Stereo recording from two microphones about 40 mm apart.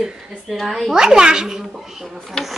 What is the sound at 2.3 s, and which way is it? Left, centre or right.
Speech, centre.